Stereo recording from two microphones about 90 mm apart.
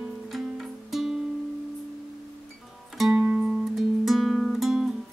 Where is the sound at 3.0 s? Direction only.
10° right (ahead or behind).